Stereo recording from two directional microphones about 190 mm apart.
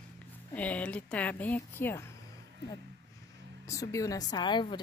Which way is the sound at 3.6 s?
15° left (ahead or behind).